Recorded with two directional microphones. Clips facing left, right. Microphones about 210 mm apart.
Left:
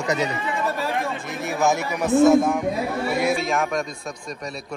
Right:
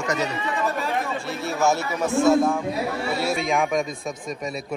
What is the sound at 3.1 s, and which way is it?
Speech, 15° left (ahead or behind).